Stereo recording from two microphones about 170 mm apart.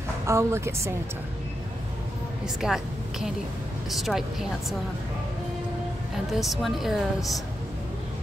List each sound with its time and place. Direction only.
0.3 s a woman's voice: 15° right (ahead or behind)
2.4 s a woman's voice: centre (ahead or behind)
6.3 s a woman's voice: centre (ahead or behind)